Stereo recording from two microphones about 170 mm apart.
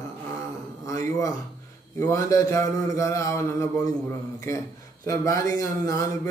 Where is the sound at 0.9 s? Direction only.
20° left (ahead or behind).